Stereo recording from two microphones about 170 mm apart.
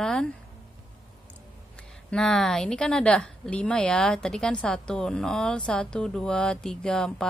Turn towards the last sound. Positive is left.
turn(degrees=5)  # may be behind; listen again after turning